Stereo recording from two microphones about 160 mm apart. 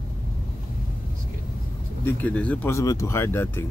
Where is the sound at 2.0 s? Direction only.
10° left (ahead or behind).